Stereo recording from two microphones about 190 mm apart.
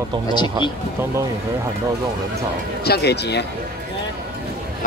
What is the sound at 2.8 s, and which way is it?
Speech, 60° left (ahead or behind).